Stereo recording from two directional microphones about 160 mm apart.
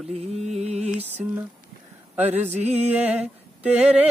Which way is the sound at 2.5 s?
45° right (ahead or behind).